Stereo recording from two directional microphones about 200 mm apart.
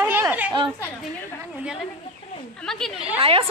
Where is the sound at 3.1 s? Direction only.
30° right (ahead or behind).